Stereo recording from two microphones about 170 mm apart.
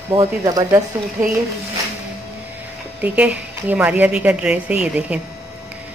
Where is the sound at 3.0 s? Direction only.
5° right (ahead or behind).